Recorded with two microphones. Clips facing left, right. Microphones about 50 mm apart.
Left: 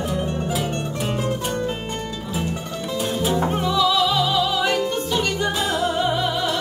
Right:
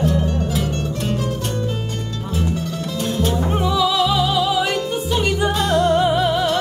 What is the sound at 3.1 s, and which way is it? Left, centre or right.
Music, centre.